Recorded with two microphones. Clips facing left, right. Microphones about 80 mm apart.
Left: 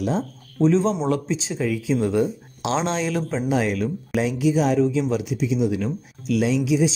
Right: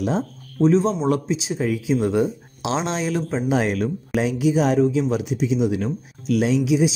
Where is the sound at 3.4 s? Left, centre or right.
Right.